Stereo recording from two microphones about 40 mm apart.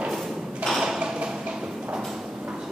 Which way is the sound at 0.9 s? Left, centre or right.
Right.